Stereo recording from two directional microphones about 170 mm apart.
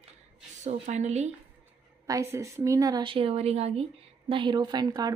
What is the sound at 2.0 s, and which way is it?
Speech, 15° right (ahead or behind).